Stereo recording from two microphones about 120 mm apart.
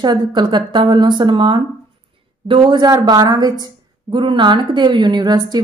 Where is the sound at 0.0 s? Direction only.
35° right (ahead or behind).